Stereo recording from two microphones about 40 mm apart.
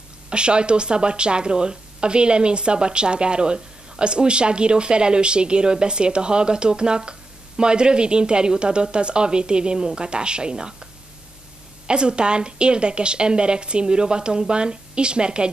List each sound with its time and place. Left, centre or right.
0.3 s speech: right
11.9 s speech: right